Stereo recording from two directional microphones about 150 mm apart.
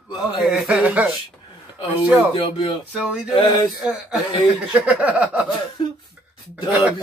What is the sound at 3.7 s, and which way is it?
Speech, 5° right (ahead or behind).